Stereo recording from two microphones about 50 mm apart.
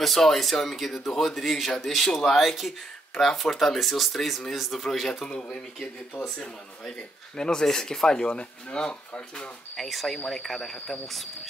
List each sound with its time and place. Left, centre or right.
0.0 s speech: centre
2.3 s speech: centre; by 9.5 s left
9.8 s speech: centre